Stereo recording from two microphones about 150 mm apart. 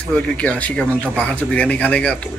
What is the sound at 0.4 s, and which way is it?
Speech, 10° left (ahead or behind).